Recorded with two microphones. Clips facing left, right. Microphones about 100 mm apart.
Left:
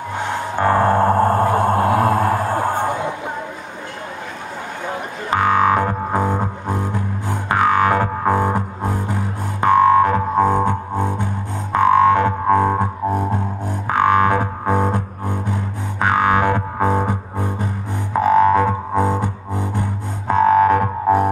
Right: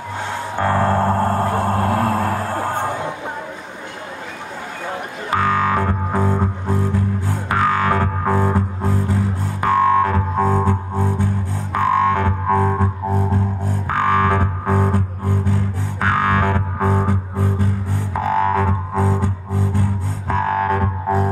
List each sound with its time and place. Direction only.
0.2 s music: 15° left (ahead or behind)
5.3 s music: 20° left (ahead or behind)